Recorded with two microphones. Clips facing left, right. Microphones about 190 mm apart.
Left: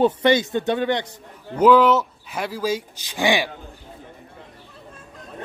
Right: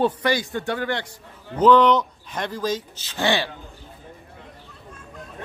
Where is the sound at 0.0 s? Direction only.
20° left (ahead or behind).